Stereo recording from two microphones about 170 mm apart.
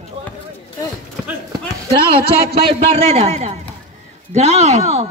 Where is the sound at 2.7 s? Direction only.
35° right (ahead or behind).